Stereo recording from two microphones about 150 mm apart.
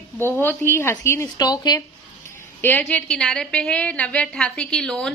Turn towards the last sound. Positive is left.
turn(degrees=5)  # may be behind; listen again after turning